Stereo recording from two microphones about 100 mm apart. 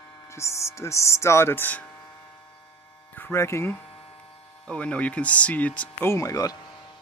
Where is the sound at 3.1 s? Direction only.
25° left (ahead or behind).